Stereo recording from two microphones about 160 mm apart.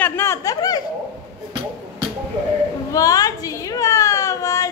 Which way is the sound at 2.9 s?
20° left (ahead or behind).